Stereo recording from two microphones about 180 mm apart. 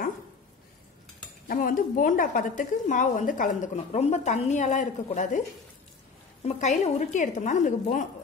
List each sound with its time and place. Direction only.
1.5 s a woman's voice: 50° left (ahead or behind)
6.4 s a woman's voice: 40° left (ahead or behind)